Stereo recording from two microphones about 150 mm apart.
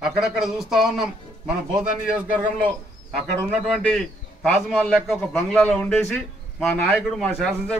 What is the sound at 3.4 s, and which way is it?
A man's voice, centre (ahead or behind).